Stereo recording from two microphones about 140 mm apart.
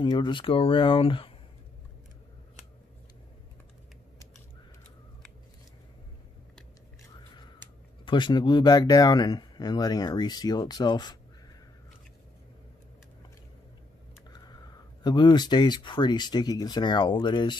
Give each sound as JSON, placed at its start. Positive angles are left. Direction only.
{"t": 0.0, "sound": "speech", "side_deg": 35}
{"t": 8.0, "sound": "speech", "side_deg": 35}
{"t": 14.3, "sound": "speech", "side_deg": 30}